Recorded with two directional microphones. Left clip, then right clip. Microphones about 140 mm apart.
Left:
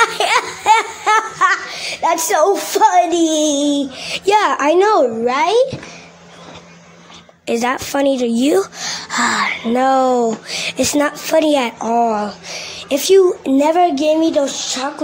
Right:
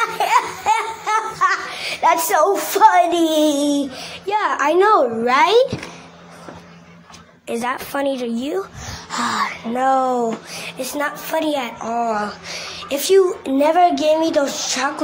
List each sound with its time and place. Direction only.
0.0 s laughter: 75° left (ahead or behind)
2.0 s speech: 40° left (ahead or behind)
4.1 s a woman's voice: 85° left; by 4.8 s 65° left (ahead or behind)
5.2 s speech: 30° left (ahead or behind)
7.5 s a woman's voice: 65° left (ahead or behind); by 8.6 s 90° left
8.7 s gasp: 55° left (ahead or behind)
9.1 s speech: 45° left (ahead or behind)
9.6 s speech: 60° left (ahead or behind)
10.6 s a woman's voice: 75° left (ahead or behind); by 14.9 s 30° left (ahead or behind)